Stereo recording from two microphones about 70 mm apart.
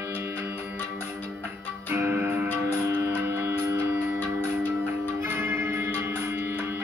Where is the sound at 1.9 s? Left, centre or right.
Right.